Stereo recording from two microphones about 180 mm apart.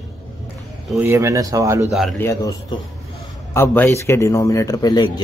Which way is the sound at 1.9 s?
Centre (ahead or behind).